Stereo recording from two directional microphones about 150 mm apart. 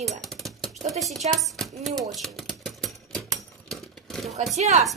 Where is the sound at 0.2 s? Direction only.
Centre (ahead or behind).